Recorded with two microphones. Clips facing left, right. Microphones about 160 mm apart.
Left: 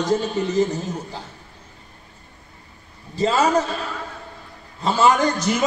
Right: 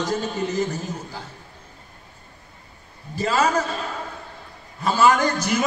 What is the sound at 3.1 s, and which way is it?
Speech, 25° left (ahead or behind).